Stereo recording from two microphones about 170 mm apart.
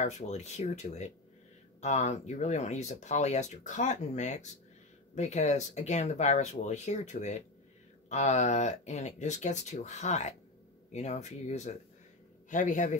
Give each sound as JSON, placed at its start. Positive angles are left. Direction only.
{"t": 0.0, "sound": "speech", "side_deg": 40}